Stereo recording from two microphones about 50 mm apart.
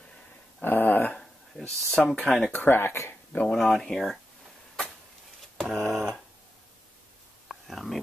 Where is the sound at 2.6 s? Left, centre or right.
Left.